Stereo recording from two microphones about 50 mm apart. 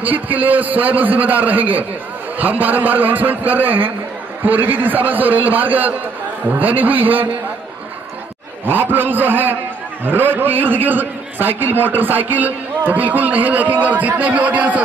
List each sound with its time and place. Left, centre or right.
0.0 s a man's voice: right
8.6 s a man's voice: right